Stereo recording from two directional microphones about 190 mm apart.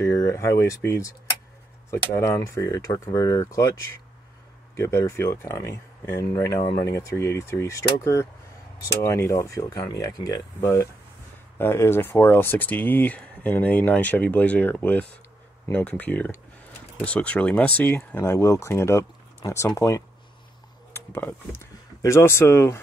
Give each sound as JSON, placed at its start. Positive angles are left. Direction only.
{"t": 0.0, "sound": "speech", "side_deg": 15}
{"t": 2.1, "sound": "speech", "side_deg": 15}
{"t": 4.7, "sound": "speech", "side_deg": 15}
{"t": 6.7, "sound": "speech", "side_deg": 60}
{"t": 7.0, "sound": "speech", "side_deg": 15}